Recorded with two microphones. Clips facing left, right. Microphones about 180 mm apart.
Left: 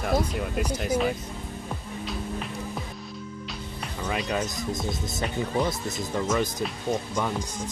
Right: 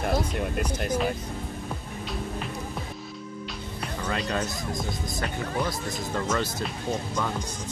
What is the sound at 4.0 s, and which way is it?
Speech, 10° left (ahead or behind).